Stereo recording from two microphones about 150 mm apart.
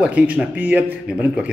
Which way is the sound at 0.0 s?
5° right (ahead or behind).